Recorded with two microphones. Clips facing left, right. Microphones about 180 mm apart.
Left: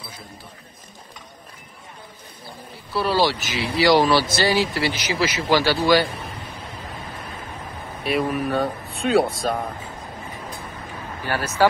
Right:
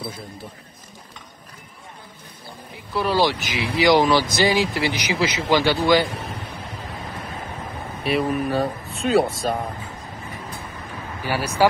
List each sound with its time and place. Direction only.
2.7 s speech: 15° right (ahead or behind)
8.0 s speech: centre (ahead or behind)
11.2 s speech: 10° right (ahead or behind)